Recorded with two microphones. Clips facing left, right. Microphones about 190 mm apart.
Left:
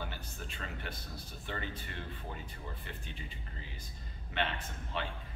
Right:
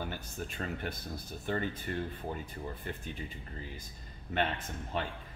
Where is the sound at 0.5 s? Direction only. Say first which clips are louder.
Right 6 dB; 45° right (ahead or behind).